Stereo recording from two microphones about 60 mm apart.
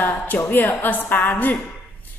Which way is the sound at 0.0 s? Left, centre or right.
Left.